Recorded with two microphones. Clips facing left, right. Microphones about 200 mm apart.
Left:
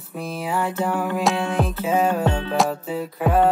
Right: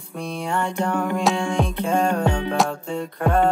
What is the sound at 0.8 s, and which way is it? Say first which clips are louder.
Music: right 1 dB; 5° left (ahead or behind).